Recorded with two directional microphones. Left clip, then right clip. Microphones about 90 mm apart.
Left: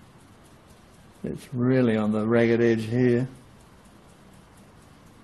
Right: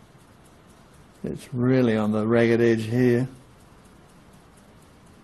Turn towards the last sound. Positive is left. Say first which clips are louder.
# right 1 dB
turn(degrees=-20)  # may be behind; listen again after turning